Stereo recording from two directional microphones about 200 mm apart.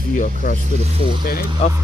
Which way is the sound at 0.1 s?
40° left (ahead or behind).